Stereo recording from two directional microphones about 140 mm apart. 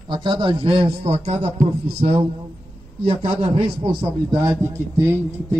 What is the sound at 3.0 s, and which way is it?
Speech, 45° right (ahead or behind).